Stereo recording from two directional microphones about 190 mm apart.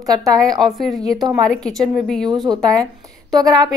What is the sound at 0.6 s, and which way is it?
Speech, centre (ahead or behind).